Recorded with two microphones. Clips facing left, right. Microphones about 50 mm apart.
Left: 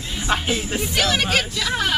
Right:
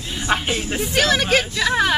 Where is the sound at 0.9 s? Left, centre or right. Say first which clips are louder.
Right 3 dB; right.